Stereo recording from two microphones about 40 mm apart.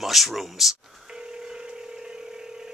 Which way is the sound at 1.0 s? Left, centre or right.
Centre.